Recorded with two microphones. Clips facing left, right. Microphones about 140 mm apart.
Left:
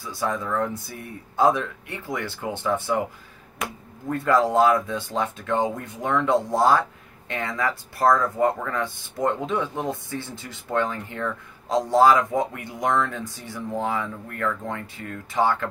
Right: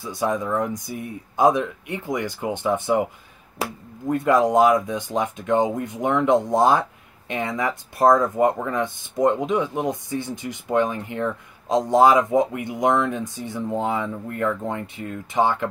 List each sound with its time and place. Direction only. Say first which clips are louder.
0.0 s speech: right 3 dB; 20° right (ahead or behind)
4.1 s speech: right 3 dB; 20° right (ahead or behind)